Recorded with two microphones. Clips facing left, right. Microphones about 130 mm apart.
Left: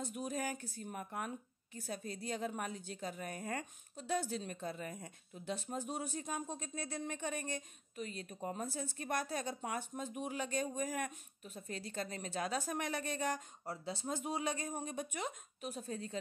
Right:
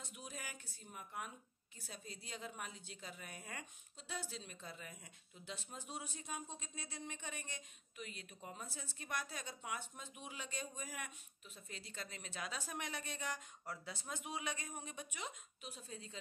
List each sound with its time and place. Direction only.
0.0 s a woman's voice: 45° left (ahead or behind)
13.7 s speech: 30° left (ahead or behind); by 16.2 s 50° left (ahead or behind)